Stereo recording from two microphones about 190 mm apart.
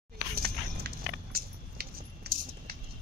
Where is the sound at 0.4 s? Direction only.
55° right (ahead or behind).